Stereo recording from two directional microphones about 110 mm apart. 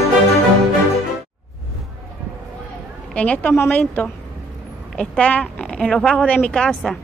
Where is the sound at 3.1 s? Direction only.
10° left (ahead or behind).